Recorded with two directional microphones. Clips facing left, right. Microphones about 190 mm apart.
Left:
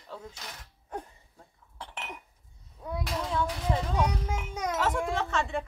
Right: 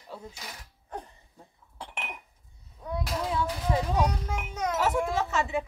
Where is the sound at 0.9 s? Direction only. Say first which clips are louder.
Left 1 dB; 5° left (ahead or behind).